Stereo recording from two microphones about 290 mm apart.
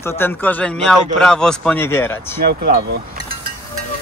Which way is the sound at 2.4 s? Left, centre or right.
Right.